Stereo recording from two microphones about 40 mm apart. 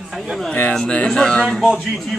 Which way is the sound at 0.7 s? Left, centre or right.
Centre.